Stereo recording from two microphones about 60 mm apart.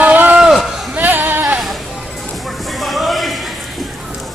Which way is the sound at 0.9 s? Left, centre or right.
Right.